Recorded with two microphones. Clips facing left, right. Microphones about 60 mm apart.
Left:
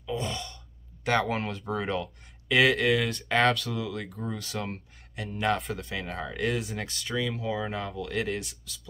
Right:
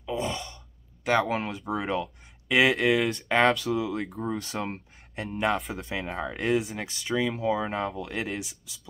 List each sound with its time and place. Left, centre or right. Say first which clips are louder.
0.0 s sigh: right 2 dB; centre
1.0 s speech: right 2 dB; centre
3.0 s speech: right 3 dB; centre
3.3 s speech: right 2 dB; centre
6.6 s speech: right 1 dB; centre; by 8.2 s right
8.2 s speech: left 4 dB; centre